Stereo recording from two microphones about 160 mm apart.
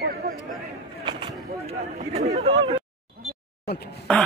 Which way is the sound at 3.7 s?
90° left.